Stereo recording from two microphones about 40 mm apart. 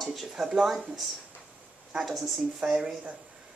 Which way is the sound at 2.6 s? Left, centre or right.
Right.